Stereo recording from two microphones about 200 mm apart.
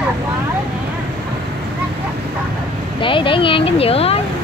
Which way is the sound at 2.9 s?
25° left (ahead or behind).